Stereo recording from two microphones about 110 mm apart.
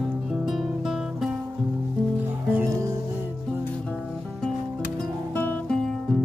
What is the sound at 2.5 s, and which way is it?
Music, 20° right (ahead or behind).